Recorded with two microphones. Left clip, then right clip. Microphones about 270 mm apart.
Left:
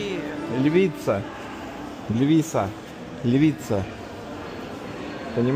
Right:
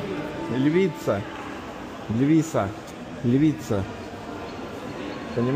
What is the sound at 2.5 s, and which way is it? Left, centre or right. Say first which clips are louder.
Speech: even; centre.